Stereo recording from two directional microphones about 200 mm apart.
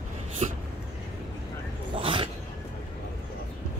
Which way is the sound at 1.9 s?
25° right (ahead or behind).